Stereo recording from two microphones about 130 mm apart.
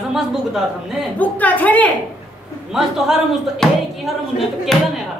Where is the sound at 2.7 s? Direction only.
5° right (ahead or behind).